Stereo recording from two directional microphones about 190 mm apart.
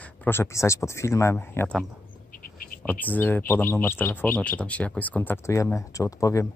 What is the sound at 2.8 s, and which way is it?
Speech, 10° left (ahead or behind).